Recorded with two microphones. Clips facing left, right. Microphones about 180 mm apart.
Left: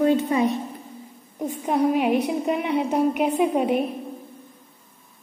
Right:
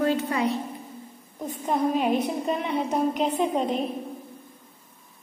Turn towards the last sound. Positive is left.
turn(degrees=10)  # may be behind; listen again after turning